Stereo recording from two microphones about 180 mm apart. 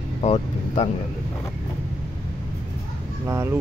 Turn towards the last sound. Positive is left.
turn(degrees=-15)  # may be behind; listen again after turning